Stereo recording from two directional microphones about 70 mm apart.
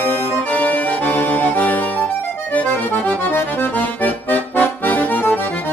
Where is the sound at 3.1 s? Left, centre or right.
Left.